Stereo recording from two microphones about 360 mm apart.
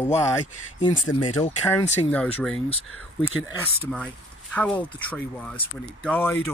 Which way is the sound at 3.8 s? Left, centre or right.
Centre.